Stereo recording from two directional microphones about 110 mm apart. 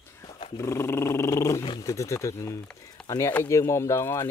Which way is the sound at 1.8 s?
30° left (ahead or behind).